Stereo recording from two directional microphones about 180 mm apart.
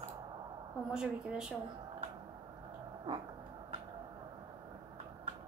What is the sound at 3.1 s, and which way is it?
Dog, 30° right (ahead or behind).